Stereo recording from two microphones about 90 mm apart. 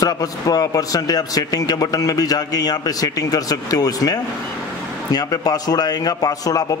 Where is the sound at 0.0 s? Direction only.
40° left (ahead or behind).